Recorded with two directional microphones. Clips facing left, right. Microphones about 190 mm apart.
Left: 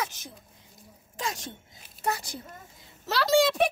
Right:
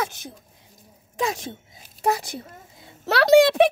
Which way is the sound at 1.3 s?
60° right (ahead or behind).